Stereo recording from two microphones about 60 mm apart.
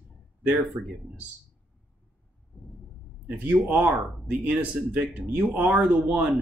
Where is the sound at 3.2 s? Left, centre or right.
Right.